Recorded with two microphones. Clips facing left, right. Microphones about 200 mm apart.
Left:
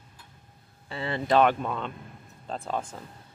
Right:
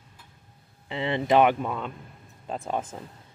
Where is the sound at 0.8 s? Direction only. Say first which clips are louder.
Right 3 dB; 20° right (ahead or behind).